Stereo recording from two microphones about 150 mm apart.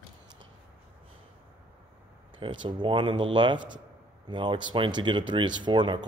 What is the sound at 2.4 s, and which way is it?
Speech, 35° right (ahead or behind).